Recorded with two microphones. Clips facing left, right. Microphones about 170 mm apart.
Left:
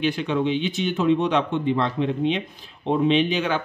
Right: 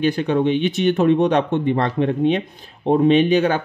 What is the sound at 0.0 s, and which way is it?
Speech, 45° right (ahead or behind).